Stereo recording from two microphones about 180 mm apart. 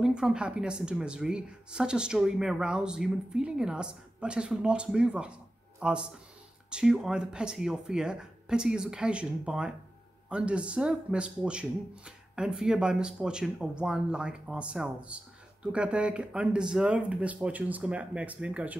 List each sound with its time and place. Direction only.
0.0 s a woman's voice: 5° right (ahead or behind)